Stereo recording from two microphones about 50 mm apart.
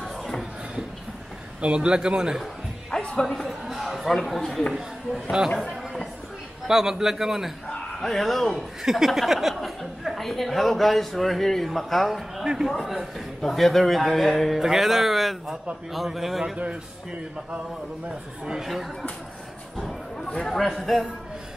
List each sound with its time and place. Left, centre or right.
1.6 s a man's voice: centre
2.9 s music: centre
3.3 s a sound: centre
4.1 s a man's voice: centre
5.1 s a man's voice: centre
6.7 s a man's voice: centre
8.0 s speech: centre
12.4 s a man's voice: centre
13.4 s speech: centre
16.5 s a man's voice: right
20.4 s speech: centre